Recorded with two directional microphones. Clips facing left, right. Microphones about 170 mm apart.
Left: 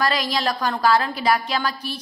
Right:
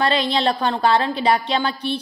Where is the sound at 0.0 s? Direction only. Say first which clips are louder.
Right 3 dB; 30° right (ahead or behind).